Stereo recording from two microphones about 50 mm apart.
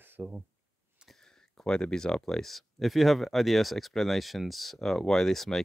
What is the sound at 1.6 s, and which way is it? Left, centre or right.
Speech, centre.